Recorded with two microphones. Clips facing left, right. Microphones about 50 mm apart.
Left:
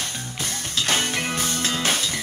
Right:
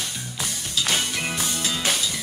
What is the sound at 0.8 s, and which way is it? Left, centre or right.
Music, left.